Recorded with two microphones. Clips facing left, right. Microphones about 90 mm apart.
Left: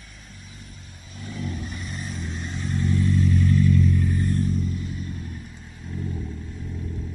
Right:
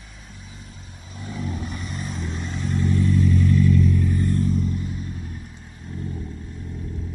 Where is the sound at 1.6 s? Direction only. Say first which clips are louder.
Right 3 dB; 55° right (ahead or behind).